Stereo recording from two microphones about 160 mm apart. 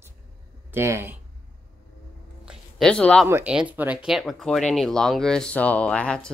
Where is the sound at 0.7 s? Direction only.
15° right (ahead or behind).